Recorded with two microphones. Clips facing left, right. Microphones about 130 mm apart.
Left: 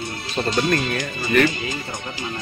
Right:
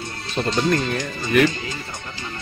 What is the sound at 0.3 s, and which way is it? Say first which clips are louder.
Speech: even; 10° left (ahead or behind).